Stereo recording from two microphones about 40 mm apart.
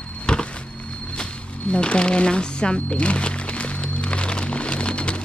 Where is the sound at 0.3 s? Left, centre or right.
Left.